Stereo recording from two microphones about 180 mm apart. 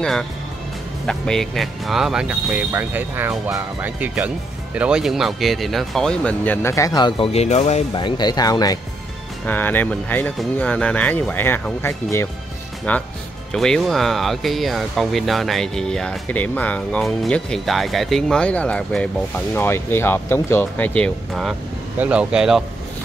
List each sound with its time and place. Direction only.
1.0 s speech: 5° left (ahead or behind); by 7.8 s 40° left (ahead or behind)
7.9 s speech: 25° left (ahead or behind)
9.5 s speech: 10° left (ahead or behind)